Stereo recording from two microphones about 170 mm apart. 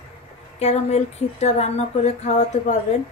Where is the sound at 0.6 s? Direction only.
40° left (ahead or behind).